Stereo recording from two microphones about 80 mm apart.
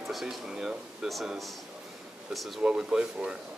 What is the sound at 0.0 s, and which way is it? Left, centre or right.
Speech, centre.